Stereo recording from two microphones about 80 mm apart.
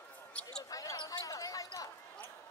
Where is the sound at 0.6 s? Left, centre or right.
Left.